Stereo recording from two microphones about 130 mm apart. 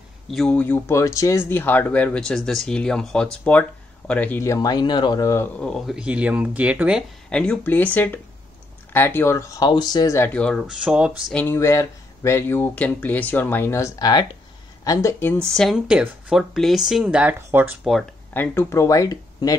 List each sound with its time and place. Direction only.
0.3 s speech: centre (ahead or behind)
0.6 s speech: 15° left (ahead or behind)
4.4 s speech: 25° left (ahead or behind)
5.6 s speech: 5° left (ahead or behind)
5.9 s speech: 10° right (ahead or behind)
7.2 s speech: 5° left (ahead or behind)
10.4 s speech: 5° left (ahead or behind)
11.3 s speech: 20° left (ahead or behind)
15.5 s speech: centre (ahead or behind)
18.3 s speech: 15° left (ahead or behind)